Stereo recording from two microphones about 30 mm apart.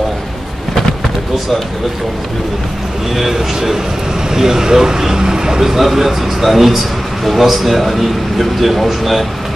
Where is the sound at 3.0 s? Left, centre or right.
Centre.